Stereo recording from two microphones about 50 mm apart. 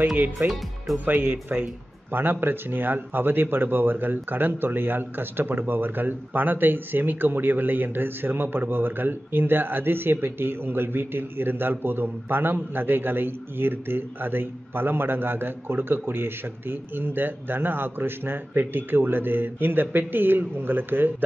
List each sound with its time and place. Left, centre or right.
0.4 s speech: right